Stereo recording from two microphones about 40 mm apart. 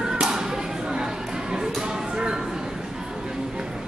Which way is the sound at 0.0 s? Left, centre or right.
Centre.